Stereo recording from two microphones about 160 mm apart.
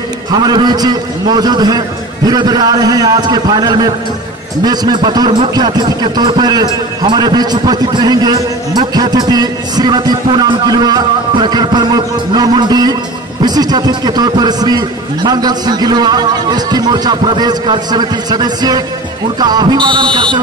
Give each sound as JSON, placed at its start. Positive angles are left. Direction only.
{"t": 0.3, "sound": "speech", "side_deg": -25}